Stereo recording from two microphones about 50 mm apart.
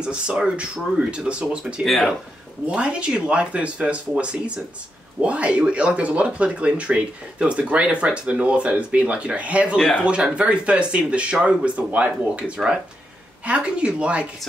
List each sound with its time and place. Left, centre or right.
0.0 s speech: right
1.8 s speech: centre
2.6 s speech: right